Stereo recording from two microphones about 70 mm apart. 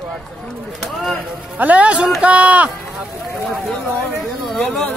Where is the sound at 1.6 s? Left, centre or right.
Right.